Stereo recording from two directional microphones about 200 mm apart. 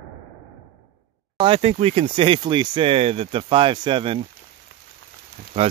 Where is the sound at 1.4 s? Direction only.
30° right (ahead or behind).